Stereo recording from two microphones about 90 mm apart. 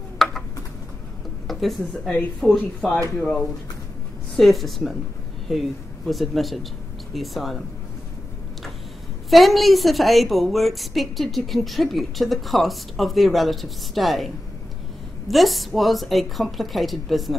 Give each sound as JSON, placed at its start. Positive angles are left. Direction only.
{"t": 0.2, "sound": "a sound", "side_deg": 5}
{"t": 1.5, "sound": "a woman's voice", "side_deg": 0}
{"t": 9.3, "sound": "a woman's voice", "side_deg": 0}